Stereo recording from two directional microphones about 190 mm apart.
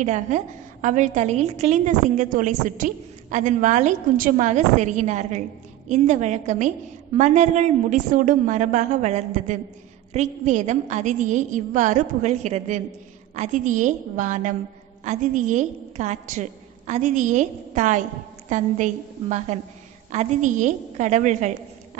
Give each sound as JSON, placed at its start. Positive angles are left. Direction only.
{"t": 0.0, "sound": "a woman's voice", "side_deg": -40}